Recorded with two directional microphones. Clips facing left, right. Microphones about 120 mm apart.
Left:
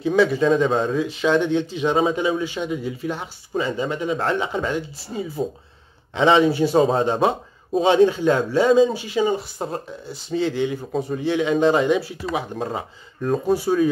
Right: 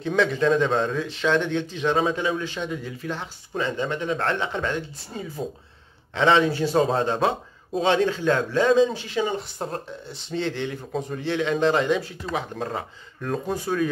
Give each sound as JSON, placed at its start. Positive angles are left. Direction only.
{"t": 0.0, "sound": "speech", "side_deg": 5}